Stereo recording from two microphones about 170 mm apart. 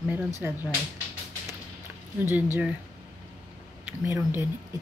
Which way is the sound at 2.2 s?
10° right (ahead or behind).